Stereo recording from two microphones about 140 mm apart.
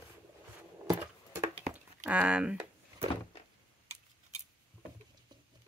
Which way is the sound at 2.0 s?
10° right (ahead or behind).